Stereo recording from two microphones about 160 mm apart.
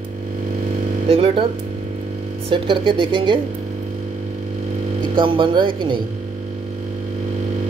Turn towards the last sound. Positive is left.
turn(degrees=-30)  # may be behind; listen again after turning